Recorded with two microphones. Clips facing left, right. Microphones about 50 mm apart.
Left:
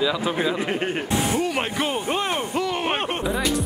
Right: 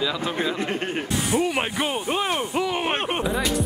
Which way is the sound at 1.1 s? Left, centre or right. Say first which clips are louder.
Even; left.